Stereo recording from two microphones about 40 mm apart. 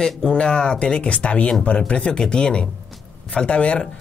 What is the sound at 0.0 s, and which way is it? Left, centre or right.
Speech, left.